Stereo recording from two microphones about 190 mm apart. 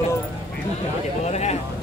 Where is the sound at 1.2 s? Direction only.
35° left (ahead or behind).